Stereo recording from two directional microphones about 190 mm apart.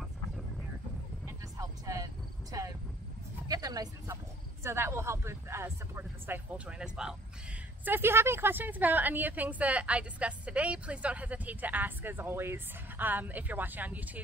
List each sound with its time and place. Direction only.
1.2 s vehicle: 15° right (ahead or behind)
2.5 s a sound: 20° right (ahead or behind)
3.4 s a woman's voice: 20° right (ahead or behind)